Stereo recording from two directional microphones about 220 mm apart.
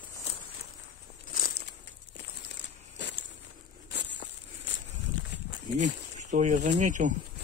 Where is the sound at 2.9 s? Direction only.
55° left (ahead or behind).